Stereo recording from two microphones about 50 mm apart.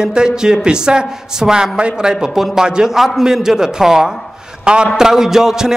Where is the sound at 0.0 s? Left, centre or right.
Centre.